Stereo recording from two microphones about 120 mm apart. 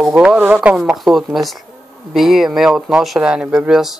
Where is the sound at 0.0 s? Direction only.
10° right (ahead or behind).